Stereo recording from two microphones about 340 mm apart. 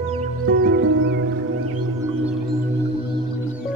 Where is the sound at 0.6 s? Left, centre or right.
Right.